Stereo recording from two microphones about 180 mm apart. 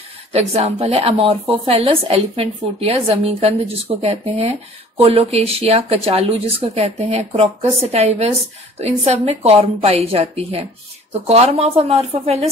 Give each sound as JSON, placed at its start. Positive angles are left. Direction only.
{"t": 0.3, "sound": "speech", "side_deg": -35}